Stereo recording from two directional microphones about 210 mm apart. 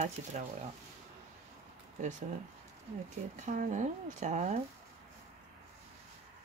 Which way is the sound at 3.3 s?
35° right (ahead or behind).